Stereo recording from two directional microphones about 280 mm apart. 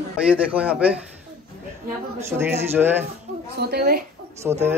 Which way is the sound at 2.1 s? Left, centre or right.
Centre.